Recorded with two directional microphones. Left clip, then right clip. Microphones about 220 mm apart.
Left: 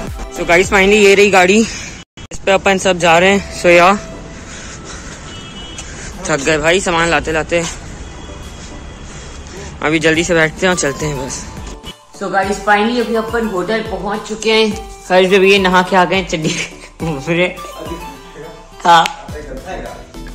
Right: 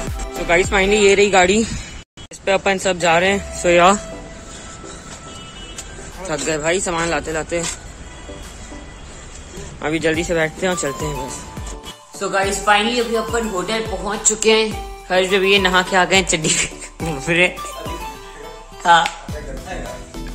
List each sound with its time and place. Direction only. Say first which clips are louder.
0.0 s speech: left 4 dB; centre (ahead or behind)
6.2 s speech: left 7 dB; centre (ahead or behind)
9.8 s speech: left 6 dB; 10° right (ahead or behind)
14.5 s speech: left 2 dB; 25° right (ahead or behind)
15.0 s speech: left 6 dB; 10° left (ahead or behind)
16.1 s speech: even; 20° right (ahead or behind)
17.0 s music: left 1 dB; centre (ahead or behind)
18.8 s speech: left 4 dB; 10° left (ahead or behind)